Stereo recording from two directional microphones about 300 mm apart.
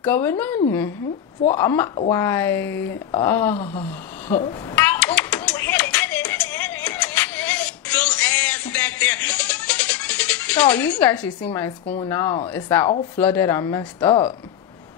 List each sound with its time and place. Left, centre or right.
0.0 s speech: centre
3.5 s a sound: centre
11.9 s speech: centre